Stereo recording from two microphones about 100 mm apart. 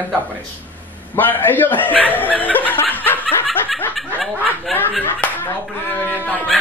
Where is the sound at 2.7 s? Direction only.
20° left (ahead or behind).